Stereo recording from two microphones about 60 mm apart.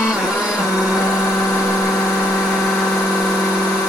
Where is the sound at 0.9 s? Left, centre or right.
Left.